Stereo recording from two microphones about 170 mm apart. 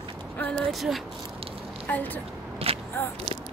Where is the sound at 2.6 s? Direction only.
35° right (ahead or behind).